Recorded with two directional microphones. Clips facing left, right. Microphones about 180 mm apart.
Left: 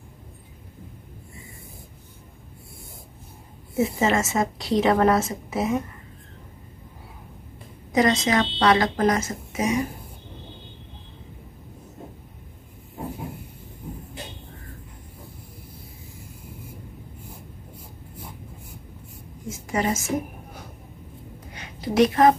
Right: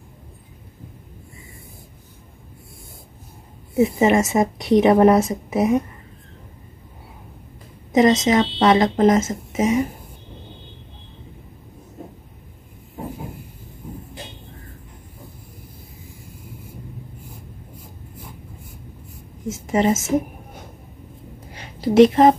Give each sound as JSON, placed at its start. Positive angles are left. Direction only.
{"t": 3.7, "sound": "a woman's voice", "side_deg": -20}
{"t": 7.9, "sound": "a woman's voice", "side_deg": -20}
{"t": 19.5, "sound": "a woman's voice", "side_deg": -25}
{"t": 21.5, "sound": "a sound", "side_deg": -30}